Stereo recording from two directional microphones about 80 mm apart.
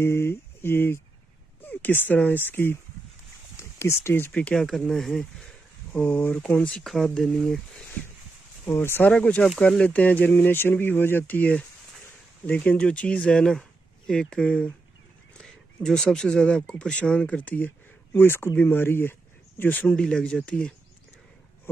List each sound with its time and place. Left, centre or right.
0.0 s speech: left
3.5 s a sound: left
4.3 s speech: centre
5.9 s speech: centre
6.8 s speech: centre
8.6 s speech: left
9.1 s speech: centre
20.0 s speech: centre